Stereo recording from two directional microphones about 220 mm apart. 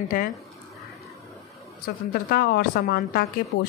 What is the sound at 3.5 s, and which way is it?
Speech, 65° left (ahead or behind).